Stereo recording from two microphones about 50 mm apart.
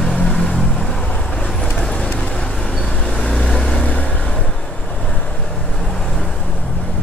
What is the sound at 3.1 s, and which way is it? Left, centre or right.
Vehicle, centre.